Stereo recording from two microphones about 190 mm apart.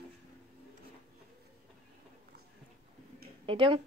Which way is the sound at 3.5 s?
25° right (ahead or behind).